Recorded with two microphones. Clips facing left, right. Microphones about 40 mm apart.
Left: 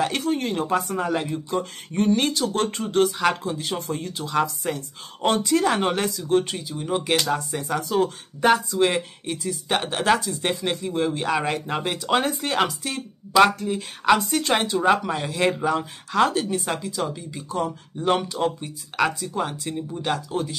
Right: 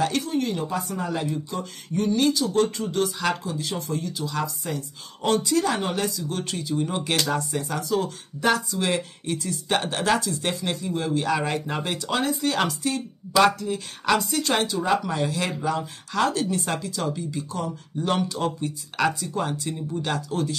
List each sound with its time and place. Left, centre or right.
0.2 s speech: left
6.6 s speech: centre
7.9 s speech: left
11.5 s speech: centre
12.1 s speech: left
12.5 s speech: centre
15.1 s speech: centre
16.6 s speech: centre
17.5 s speech: left